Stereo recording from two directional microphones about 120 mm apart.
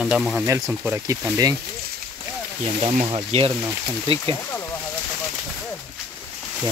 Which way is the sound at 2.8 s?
55° right (ahead or behind).